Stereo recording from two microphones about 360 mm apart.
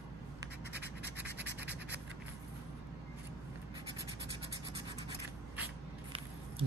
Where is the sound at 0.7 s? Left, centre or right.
Right.